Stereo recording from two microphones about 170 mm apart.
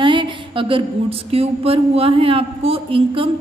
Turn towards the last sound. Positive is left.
turn(degrees=-30)  # may be behind; listen again after turning